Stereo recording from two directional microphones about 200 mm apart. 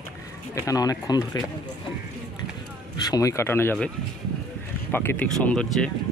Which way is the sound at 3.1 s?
15° left (ahead or behind).